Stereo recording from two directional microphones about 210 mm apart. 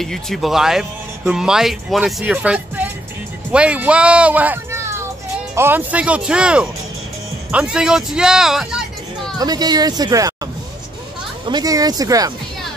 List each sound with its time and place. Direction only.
0.0 s a child's voice: centre (ahead or behind)
9.4 s speech: 20° right (ahead or behind)